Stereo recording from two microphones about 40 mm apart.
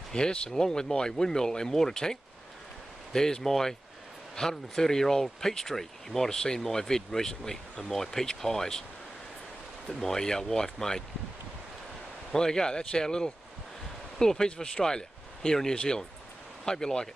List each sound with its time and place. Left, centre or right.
0.1 s a man's voice: left
9.8 s speech: centre
12.3 s a man's voice: centre